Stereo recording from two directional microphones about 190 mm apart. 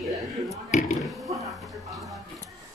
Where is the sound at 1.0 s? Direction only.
Centre (ahead or behind).